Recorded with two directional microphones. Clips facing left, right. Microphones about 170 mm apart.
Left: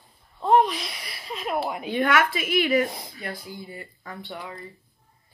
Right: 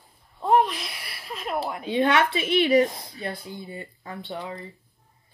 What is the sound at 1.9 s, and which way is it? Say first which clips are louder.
Speech: right 2 dB; 25° right (ahead or behind).